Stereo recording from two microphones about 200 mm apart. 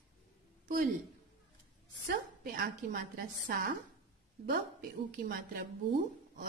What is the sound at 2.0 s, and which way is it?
A woman's voice, 45° right (ahead or behind).